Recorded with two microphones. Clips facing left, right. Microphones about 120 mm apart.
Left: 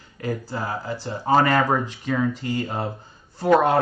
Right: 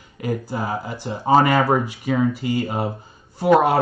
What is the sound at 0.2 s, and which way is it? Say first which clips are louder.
Speech: right 3 dB; 15° right (ahead or behind).